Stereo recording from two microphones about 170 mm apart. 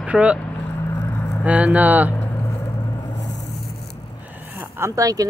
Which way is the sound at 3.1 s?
90° left.